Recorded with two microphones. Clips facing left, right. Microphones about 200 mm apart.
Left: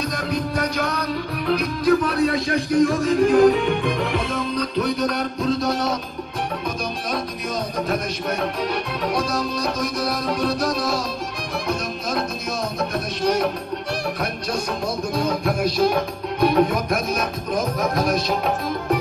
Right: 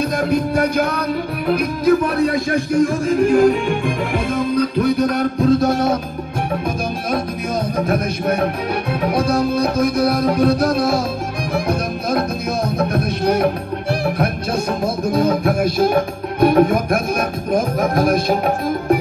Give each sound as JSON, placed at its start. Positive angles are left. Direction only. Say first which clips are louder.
{"t": 0.0, "sound": "music", "louder": "right 7 dB", "side_deg": -55}
{"t": 7.7, "sound": "music", "louder": "right 6 dB", "side_deg": -55}